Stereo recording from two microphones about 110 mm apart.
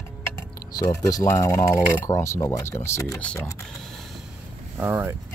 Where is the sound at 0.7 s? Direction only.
35° left (ahead or behind).